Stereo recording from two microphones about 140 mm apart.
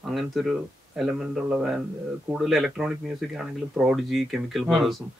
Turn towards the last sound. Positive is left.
turn(degrees=0)  # may be behind; listen again after turning